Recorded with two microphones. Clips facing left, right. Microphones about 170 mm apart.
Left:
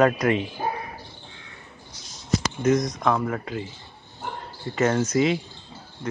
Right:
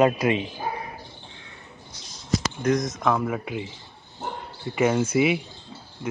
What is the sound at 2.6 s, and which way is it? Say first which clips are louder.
Speech: left 3 dB; 5° left (ahead or behind).